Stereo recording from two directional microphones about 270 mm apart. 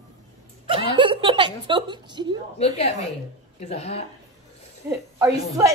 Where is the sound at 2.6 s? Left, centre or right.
Left.